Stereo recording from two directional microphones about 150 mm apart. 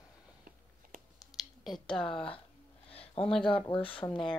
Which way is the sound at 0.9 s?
65° right (ahead or behind).